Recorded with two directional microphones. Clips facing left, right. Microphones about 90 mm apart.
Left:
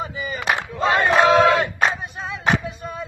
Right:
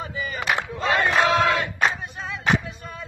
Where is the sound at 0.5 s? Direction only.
25° left (ahead or behind).